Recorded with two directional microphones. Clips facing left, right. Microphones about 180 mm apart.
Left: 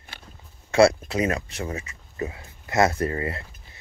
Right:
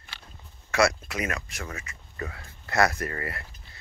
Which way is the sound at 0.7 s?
30° left (ahead or behind).